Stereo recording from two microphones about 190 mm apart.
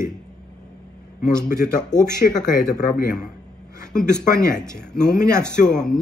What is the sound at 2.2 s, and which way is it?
Speech, 45° left (ahead or behind).